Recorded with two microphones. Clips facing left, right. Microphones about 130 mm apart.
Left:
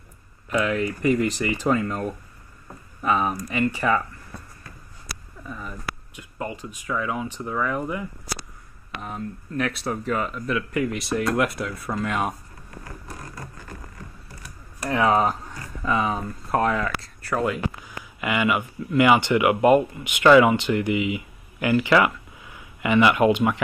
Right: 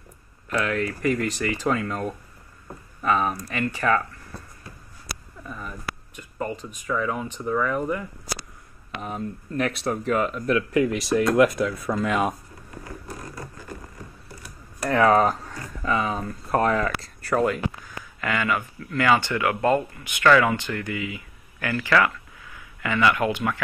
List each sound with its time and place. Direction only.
0.5 s speech: 10° left (ahead or behind)
5.5 s speech: centre (ahead or behind)
9.0 s speech: 10° right (ahead or behind)
14.9 s speech: 15° left (ahead or behind)
16.4 s speech: centre (ahead or behind)
17.8 s speech: 15° left (ahead or behind)